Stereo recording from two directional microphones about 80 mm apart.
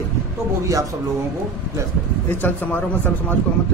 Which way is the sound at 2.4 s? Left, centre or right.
Centre.